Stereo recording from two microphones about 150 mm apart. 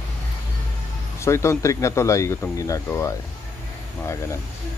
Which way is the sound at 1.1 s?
20° left (ahead or behind).